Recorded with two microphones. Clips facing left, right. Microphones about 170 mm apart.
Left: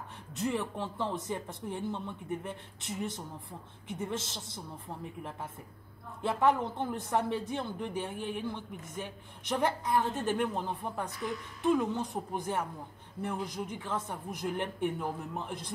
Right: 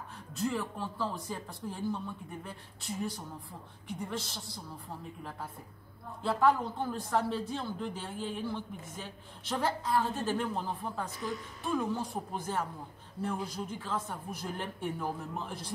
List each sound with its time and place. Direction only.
0.3 s speech: 20° left (ahead or behind)
6.2 s a woman's voice: 20° left (ahead or behind)